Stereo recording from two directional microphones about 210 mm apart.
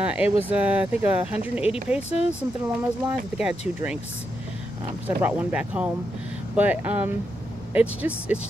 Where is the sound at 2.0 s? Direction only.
30° left (ahead or behind).